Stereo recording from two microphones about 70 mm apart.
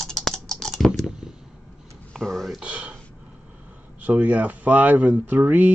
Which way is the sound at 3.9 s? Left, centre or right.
Right.